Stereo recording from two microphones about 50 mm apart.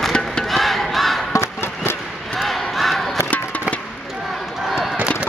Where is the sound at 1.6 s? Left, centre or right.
Left.